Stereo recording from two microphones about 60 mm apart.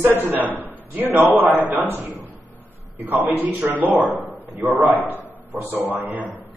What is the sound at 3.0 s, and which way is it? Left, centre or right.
A man's voice, right.